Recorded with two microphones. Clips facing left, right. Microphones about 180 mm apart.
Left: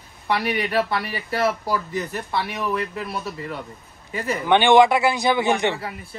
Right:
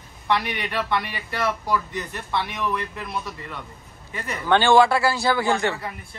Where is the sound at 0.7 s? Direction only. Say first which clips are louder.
Left 3 dB; 35° left (ahead or behind).